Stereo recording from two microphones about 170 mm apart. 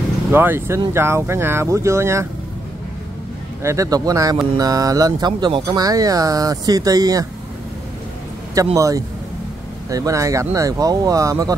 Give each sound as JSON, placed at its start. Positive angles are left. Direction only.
{"t": 0.3, "sound": "speech", "side_deg": -15}
{"t": 3.6, "sound": "speech", "side_deg": -20}
{"t": 8.7, "sound": "speech", "side_deg": -20}